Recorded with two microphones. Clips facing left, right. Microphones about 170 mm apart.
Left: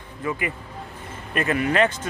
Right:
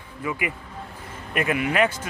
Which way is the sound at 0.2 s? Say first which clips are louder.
Left 1 dB; 10° right (ahead or behind).